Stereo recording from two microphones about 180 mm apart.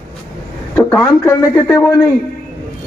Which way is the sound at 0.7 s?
15° left (ahead or behind).